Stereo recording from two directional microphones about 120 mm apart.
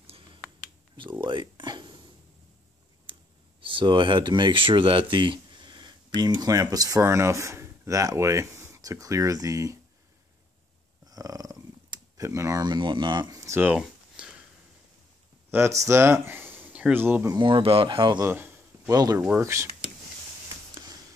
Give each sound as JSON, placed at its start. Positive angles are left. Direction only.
{"t": 0.0, "sound": "a sound", "side_deg": -50}
{"t": 1.2, "sound": "a sound", "side_deg": -40}
{"t": 3.1, "sound": "a sound", "side_deg": -45}
{"t": 3.6, "sound": "speech", "side_deg": -45}
{"t": 11.1, "sound": "purr", "side_deg": -30}
{"t": 12.6, "sound": "speech", "side_deg": -40}
{"t": 13.6, "sound": "a sound", "side_deg": -10}
{"t": 15.8, "sound": "speech", "side_deg": -20}
{"t": 17.3, "sound": "speech", "side_deg": -40}
{"t": 18.2, "sound": "speech", "side_deg": -20}
{"t": 18.9, "sound": "speech", "side_deg": -30}
{"t": 19.2, "sound": "speech", "side_deg": -20}